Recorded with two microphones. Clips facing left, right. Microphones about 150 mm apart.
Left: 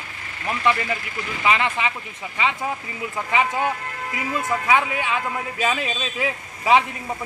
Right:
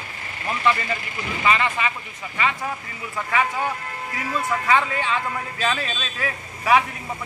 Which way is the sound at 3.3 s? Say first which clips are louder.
Left 1 dB; 20° left (ahead or behind).